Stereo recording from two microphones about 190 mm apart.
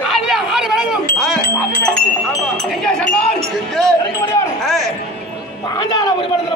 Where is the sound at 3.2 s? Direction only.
5° left (ahead or behind).